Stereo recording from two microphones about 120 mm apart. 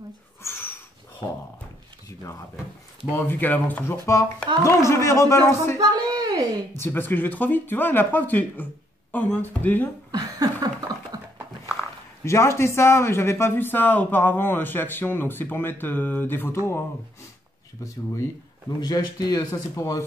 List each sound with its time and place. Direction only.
0.4 s a sound: 20° left (ahead or behind)
3.1 s speech: 15° left (ahead or behind)
5.8 s a woman's voice: 30° right (ahead or behind)
6.7 s speech: 20° left (ahead or behind)
10.1 s a sound: 35° right (ahead or behind)
12.3 s speech: 25° left (ahead or behind)
18.8 s a man's voice: 35° left (ahead or behind)